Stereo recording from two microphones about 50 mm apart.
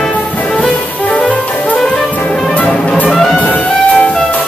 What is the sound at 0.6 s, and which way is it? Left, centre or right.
Music, left.